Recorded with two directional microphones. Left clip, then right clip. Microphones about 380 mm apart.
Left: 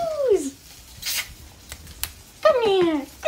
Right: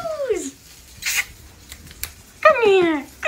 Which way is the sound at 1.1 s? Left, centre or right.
Centre.